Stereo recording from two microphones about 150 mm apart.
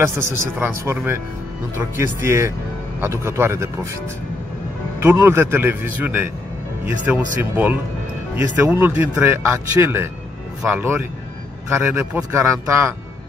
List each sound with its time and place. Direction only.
0.0 s speech: 15° right (ahead or behind)
5.0 s speech: 15° right (ahead or behind)
7.5 s speech: 10° right (ahead or behind)